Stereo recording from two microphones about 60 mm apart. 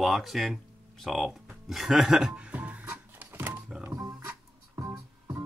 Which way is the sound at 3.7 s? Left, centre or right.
Centre.